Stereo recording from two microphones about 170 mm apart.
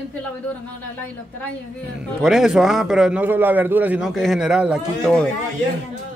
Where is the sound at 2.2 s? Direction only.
5° right (ahead or behind).